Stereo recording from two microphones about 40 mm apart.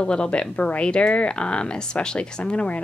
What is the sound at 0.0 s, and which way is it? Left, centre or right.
Speech, left.